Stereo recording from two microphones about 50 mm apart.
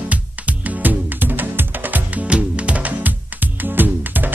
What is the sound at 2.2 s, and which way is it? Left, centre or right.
Music, right.